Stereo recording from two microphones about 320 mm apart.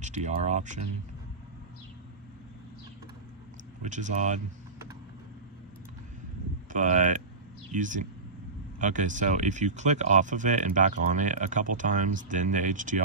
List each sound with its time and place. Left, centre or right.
0.0 s speech: right
3.8 s speech: right
6.7 s speech: right